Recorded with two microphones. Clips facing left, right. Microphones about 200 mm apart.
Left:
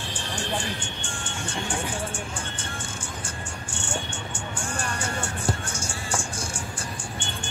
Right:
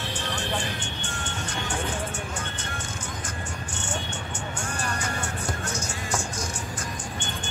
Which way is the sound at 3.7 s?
30° left (ahead or behind).